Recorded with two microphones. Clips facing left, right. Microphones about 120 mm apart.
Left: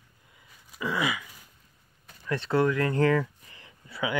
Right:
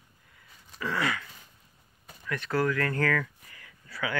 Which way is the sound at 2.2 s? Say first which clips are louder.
Left 3 dB; 30° left (ahead or behind).